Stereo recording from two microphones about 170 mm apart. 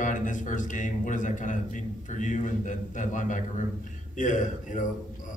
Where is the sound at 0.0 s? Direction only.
50° left (ahead or behind).